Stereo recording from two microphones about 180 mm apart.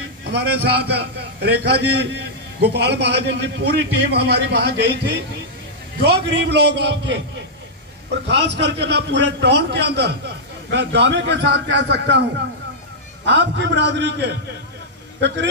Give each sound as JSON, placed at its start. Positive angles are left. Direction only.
{"t": 0.2, "sound": "a man's voice", "side_deg": -65}
{"t": 8.3, "sound": "a man's voice", "side_deg": -75}